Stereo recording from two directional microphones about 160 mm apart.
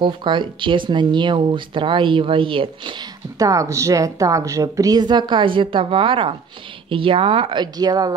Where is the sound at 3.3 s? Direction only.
20° right (ahead or behind).